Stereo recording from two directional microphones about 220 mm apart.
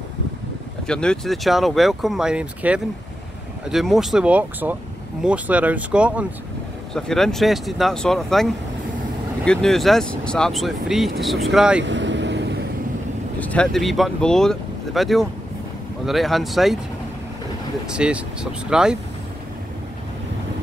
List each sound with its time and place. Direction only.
0.8 s speech: 5° left (ahead or behind)
11.8 s vehicle: 55° right (ahead or behind)
13.4 s speech: 5° left (ahead or behind)
17.8 s speech: 5° right (ahead or behind)